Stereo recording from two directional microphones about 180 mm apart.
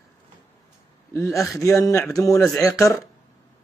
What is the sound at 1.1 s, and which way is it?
Speech, 15° left (ahead or behind).